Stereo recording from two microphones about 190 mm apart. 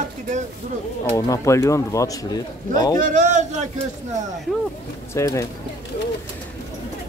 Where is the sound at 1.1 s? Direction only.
15° left (ahead or behind).